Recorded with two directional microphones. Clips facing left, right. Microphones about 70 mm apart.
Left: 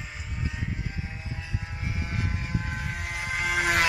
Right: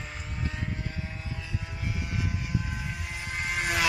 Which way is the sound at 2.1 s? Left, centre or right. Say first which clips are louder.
Even; left.